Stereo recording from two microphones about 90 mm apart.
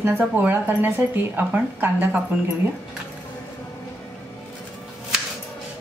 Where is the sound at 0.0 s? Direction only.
25° right (ahead or behind).